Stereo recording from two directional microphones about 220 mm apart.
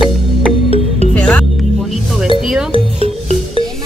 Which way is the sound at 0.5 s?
25° left (ahead or behind).